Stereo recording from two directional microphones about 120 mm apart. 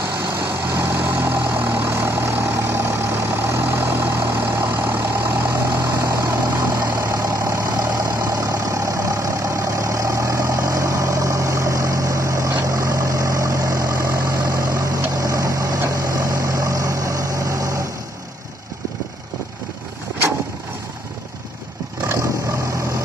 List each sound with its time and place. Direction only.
0.7 s vehicle: 20° right (ahead or behind)